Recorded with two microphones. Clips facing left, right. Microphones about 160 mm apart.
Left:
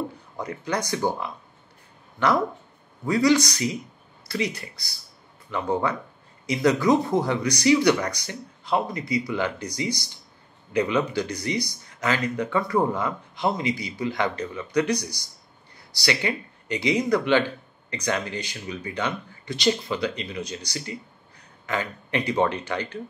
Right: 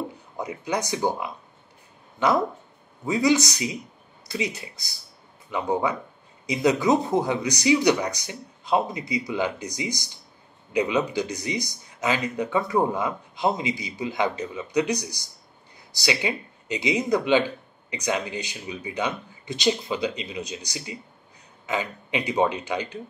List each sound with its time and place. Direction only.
0.4 s speech: 10° right (ahead or behind)
5.5 s speech: 15° right (ahead or behind)